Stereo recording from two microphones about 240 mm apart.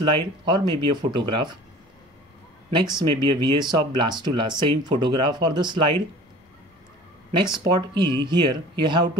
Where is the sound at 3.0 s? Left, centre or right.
Centre.